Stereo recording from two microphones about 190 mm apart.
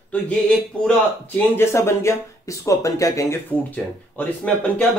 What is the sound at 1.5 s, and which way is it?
Speech, 15° left (ahead or behind).